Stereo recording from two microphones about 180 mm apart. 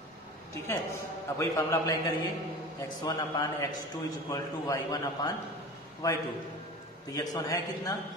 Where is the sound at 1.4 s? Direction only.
15° left (ahead or behind).